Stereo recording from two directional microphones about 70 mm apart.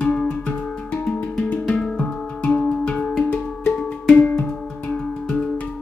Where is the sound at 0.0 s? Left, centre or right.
Centre.